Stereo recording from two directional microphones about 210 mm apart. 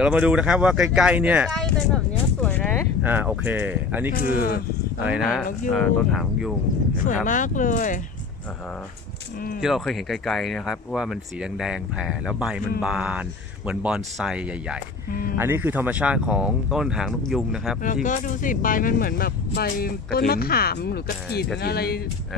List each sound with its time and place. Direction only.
0.0 s speech: 5° right (ahead or behind)
2.4 s a sound: 5° left (ahead or behind)
3.0 s speech: 10° right (ahead or behind)
4.1 s speech: 40° left (ahead or behind)
5.0 s speech: 5° right (ahead or behind)
7.2 s speech: 40° left (ahead or behind)
9.6 s speech: centre (ahead or behind)
15.0 s speech: 45° left (ahead or behind)
15.3 s speech: 10° right (ahead or behind)
18.0 s speech: 35° left (ahead or behind)